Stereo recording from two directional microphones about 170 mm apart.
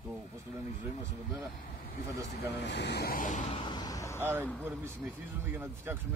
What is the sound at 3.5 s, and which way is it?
Vehicle, 25° left (ahead or behind).